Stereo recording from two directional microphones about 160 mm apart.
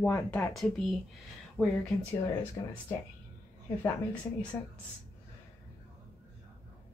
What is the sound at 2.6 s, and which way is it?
Speech, 20° left (ahead or behind).